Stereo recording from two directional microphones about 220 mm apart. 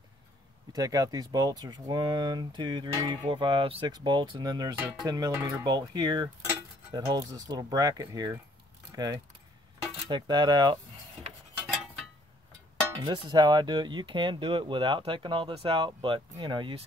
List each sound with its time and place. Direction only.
0.7 s speech: 15° right (ahead or behind)
13.0 s speech: 20° right (ahead or behind)